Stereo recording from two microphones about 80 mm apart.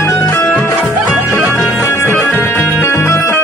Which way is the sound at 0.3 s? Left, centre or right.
Left.